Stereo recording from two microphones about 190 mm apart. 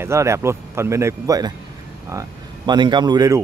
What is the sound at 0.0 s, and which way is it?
Speech, 15° right (ahead or behind).